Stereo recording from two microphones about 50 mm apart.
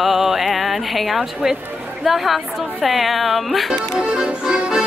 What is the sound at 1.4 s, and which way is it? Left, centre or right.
Speech, centre.